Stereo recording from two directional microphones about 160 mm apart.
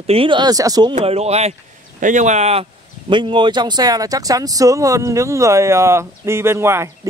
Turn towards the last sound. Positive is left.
turn(degrees=-15)  # may be behind; listen again after turning